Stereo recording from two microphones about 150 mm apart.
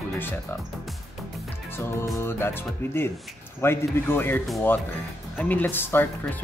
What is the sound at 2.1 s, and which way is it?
Speech, 15° left (ahead or behind).